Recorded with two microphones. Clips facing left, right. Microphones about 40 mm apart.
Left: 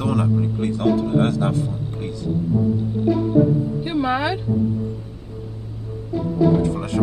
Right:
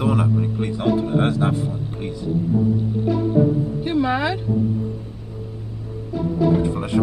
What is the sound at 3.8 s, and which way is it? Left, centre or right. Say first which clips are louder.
Speech: right 2 dB; centre.